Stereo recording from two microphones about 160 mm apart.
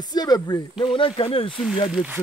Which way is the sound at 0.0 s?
25° left (ahead or behind).